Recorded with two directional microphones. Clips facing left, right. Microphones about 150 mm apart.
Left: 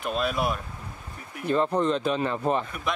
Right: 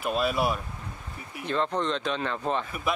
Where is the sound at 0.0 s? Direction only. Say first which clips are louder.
Right 1 dB; centre (ahead or behind).